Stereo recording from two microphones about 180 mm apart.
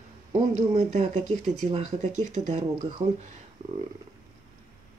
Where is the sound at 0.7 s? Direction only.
40° right (ahead or behind).